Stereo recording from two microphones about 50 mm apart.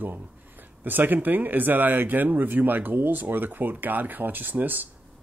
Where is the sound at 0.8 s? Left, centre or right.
Right.